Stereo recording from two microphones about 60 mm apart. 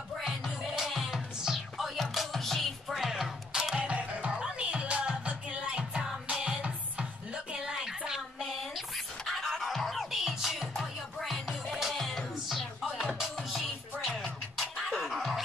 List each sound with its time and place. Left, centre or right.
0.7 s music: centre
3.8 s music: right; by 15.4 s centre